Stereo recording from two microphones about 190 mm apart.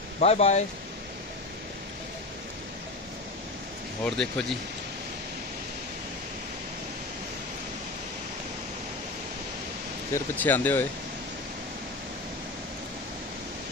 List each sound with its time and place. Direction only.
0.2 s speech: 35° left (ahead or behind)
4.0 s speech: 5° left (ahead or behind)
10.1 s speech: 10° left (ahead or behind)